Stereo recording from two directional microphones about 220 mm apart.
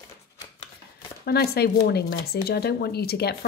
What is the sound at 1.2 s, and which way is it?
Speech, 45° left (ahead or behind).